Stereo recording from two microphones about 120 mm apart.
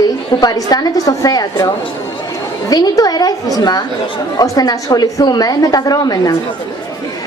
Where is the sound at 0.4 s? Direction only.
35° left (ahead or behind).